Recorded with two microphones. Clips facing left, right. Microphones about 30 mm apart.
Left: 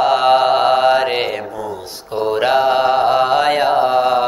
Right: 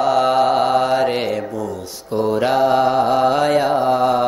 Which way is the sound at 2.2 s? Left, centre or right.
Left.